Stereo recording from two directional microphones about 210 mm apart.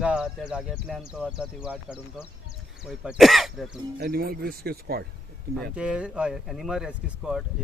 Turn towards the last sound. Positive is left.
turn(degrees=-5)  # may be behind; listen again after turning